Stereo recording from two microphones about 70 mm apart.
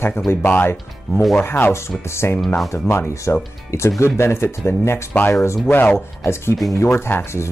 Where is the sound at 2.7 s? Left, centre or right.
Left.